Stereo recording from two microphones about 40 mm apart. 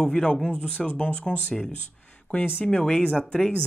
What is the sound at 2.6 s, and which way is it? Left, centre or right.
Speech, left.